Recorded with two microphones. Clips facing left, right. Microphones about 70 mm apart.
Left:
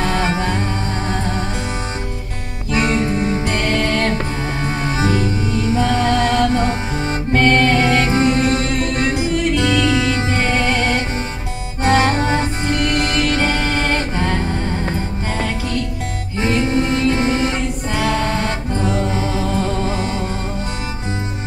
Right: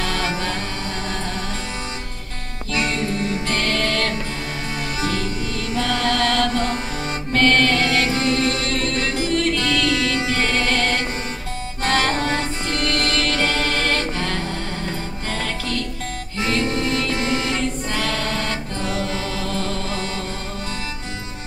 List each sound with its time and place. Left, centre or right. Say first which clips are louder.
0.0 s music: left 5 dB; left
2.7 s music: left 5 dB; left
3.4 s music: left 3 dB; centre
4.8 s music: left 6 dB; left
5.1 s music: left 6 dB; centre
16.3 s music: left 5 dB; left
17.9 s music: left 8 dB; centre